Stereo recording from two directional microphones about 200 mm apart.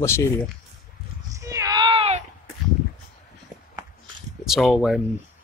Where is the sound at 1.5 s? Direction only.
15° right (ahead or behind).